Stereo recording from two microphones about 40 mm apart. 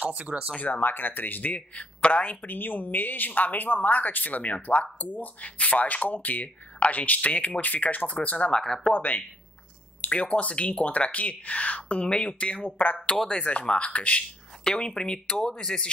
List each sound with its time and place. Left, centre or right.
0.0 s speech: right
0.7 s speech: left
2.0 s speech: left
2.4 s speech: left
8.5 s speech: centre
8.9 s speech: left
10.0 s speech: left
12.6 s speech: left
13.5 s speech: left
14.6 s speech: centre